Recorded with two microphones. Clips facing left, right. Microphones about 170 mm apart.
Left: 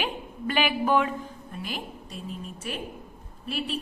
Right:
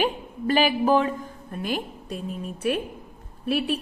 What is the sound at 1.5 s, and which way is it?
Speech, 50° right (ahead or behind).